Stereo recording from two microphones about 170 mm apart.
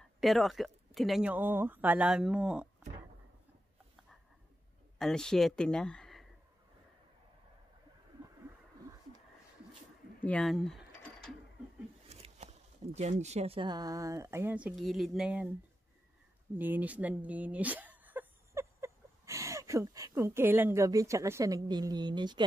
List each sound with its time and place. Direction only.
0.2 s speech: centre (ahead or behind)
4.9 s speech: 5° left (ahead or behind)
10.2 s mechanisms: 5° left (ahead or behind)
12.1 s speech: 35° right (ahead or behind); by 15.5 s 5° right (ahead or behind)
16.5 s speech: 10° right (ahead or behind)